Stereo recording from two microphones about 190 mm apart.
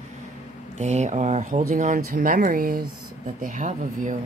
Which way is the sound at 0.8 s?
35° right (ahead or behind).